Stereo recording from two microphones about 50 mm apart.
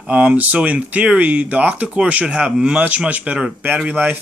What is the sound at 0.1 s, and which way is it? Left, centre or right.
Speech, right.